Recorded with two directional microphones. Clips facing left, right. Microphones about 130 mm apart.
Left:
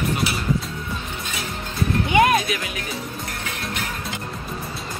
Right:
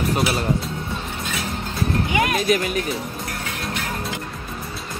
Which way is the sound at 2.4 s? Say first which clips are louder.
Right 8 dB; 45° right (ahead or behind).